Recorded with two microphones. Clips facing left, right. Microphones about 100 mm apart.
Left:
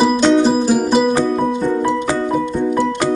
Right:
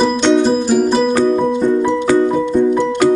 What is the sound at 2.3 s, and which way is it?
Music, 5° left (ahead or behind).